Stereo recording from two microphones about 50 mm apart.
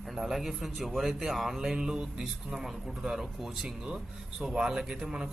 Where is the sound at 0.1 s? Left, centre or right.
Centre.